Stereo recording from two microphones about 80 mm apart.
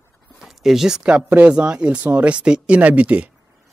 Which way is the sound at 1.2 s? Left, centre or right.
Centre.